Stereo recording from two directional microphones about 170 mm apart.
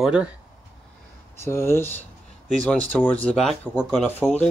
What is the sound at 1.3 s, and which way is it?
Speech, 15° left (ahead or behind).